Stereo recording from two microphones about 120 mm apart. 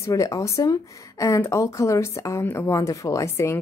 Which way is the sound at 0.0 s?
25° left (ahead or behind).